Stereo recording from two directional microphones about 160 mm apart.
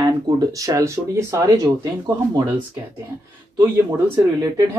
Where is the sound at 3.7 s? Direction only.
15° right (ahead or behind).